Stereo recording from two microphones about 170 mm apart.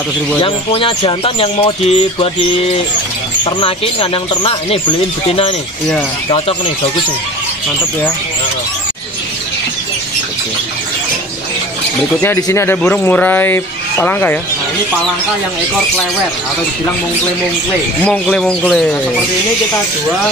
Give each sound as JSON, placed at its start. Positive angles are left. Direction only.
{"t": 0.4, "sound": "speech", "side_deg": 30}
{"t": 12.2, "sound": "speech", "side_deg": 15}
{"t": 18.0, "sound": "speech", "side_deg": 5}